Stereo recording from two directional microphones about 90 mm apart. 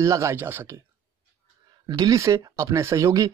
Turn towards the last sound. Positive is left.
turn(degrees=-40)  # may be behind; listen again after turning